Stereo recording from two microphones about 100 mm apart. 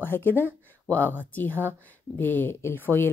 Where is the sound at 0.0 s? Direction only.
20° left (ahead or behind).